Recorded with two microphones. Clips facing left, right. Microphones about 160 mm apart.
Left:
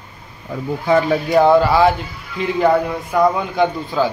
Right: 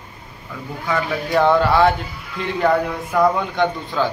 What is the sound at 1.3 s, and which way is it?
A man's voice, 5° left (ahead or behind).